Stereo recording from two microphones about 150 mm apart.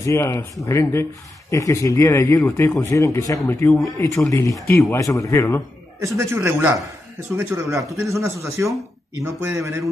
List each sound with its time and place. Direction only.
0.0 s speech: 20° left (ahead or behind)
5.9 s speech: 20° right (ahead or behind)